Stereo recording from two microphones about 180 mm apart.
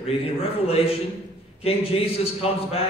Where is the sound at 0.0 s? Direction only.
30° left (ahead or behind).